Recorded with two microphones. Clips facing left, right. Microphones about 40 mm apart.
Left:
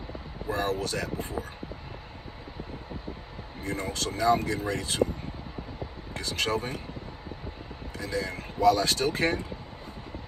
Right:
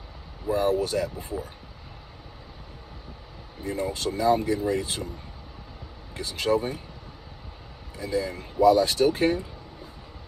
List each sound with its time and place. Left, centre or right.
0.5 s speech: left
3.6 s speech: left
6.1 s speech: left
8.0 s speech: left